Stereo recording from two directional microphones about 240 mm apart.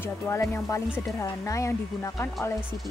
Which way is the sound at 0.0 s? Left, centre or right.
Centre.